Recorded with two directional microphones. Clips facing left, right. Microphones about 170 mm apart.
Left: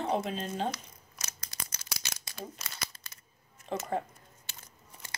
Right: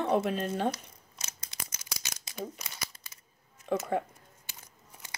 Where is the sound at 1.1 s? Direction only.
25° right (ahead or behind).